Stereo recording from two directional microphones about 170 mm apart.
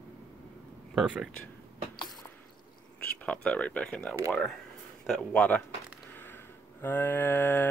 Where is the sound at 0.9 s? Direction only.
5° right (ahead or behind).